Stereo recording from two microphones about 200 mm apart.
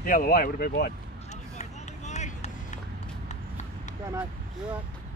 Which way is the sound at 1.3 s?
35° left (ahead or behind).